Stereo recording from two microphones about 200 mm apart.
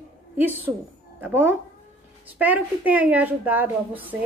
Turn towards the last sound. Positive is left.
turn(degrees=-10)  # may be behind; listen again after turning